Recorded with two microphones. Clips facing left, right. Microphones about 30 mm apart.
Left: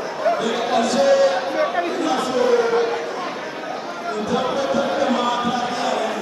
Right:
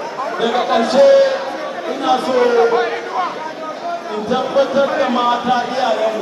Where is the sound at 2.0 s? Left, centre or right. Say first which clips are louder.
Right 7 dB; right.